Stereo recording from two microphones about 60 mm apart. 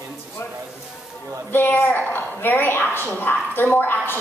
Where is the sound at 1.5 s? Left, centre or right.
Left.